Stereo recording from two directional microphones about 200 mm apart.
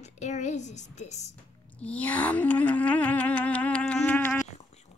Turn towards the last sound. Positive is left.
turn(degrees=10)  # may be behind; listen again after turning